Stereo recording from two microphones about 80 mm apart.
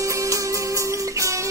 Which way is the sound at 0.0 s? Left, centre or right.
Right.